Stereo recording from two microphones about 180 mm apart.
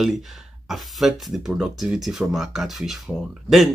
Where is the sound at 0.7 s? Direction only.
Centre (ahead or behind).